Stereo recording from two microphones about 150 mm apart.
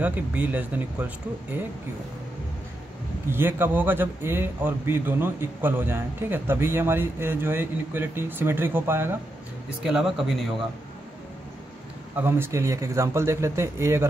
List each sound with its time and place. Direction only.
0.0 s a man's voice: 10° right (ahead or behind)
3.3 s a man's voice: 15° right (ahead or behind)
9.8 s speech: 5° right (ahead or behind)
12.2 s speech: 15° right (ahead or behind)